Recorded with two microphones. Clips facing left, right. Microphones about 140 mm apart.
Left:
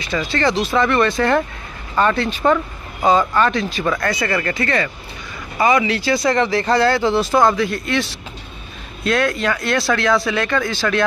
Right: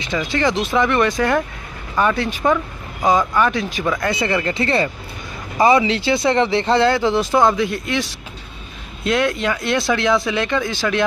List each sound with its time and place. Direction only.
0.0 s speech: 20° right (ahead or behind)